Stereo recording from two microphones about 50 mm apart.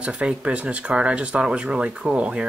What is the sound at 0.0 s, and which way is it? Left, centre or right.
Speech, right.